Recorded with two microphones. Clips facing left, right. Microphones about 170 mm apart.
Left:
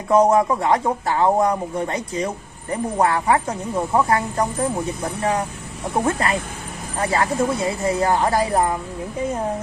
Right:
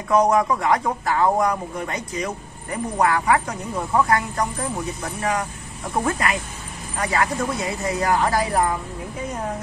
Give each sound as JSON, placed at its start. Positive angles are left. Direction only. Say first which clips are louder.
{"t": 0.1, "sound": "a man's voice", "louder": "left 2 dB", "side_deg": 30}